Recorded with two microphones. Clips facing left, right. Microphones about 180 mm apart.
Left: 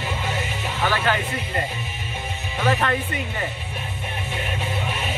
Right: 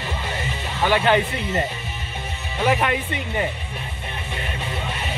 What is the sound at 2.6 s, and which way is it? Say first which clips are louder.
Speech: right 1 dB; 15° right (ahead or behind).